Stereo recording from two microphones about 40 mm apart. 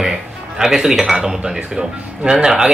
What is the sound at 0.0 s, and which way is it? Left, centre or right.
Music, centre.